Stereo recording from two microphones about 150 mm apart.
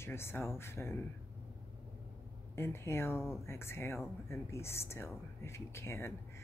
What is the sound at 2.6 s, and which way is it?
Speech, 15° left (ahead or behind).